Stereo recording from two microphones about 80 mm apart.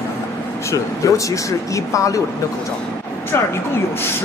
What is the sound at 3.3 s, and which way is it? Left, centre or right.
Speech, left.